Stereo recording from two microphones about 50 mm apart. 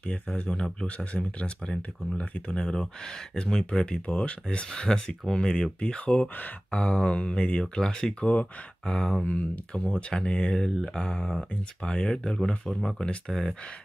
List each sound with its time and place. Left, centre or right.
0.3 s speech: centre
8.8 s speech: centre
9.2 s speech: left
10.7 s mantra: centre
11.0 s speech: centre